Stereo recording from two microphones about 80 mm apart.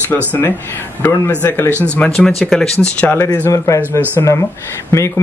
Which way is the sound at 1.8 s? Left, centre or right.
Centre.